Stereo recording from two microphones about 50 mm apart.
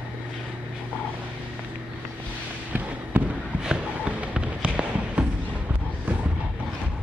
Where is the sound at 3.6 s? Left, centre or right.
Centre.